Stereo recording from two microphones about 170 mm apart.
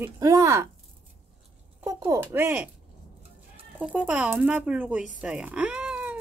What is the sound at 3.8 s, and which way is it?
Speech, 5° right (ahead or behind).